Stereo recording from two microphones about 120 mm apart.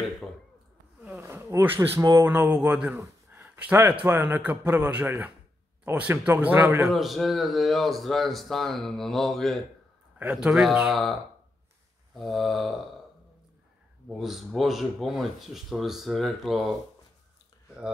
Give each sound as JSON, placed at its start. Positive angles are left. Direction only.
{"t": 1.1, "sound": "a man's voice", "side_deg": -25}
{"t": 6.8, "sound": "speech", "side_deg": 0}
{"t": 12.2, "sound": "speech", "side_deg": 0}
{"t": 14.0, "sound": "speech", "side_deg": 0}